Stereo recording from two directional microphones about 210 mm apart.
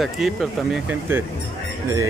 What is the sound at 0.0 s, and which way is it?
Speech, centre (ahead or behind).